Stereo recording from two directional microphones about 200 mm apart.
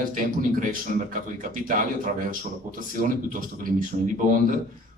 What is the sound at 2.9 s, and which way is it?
Speech, 45° right (ahead or behind).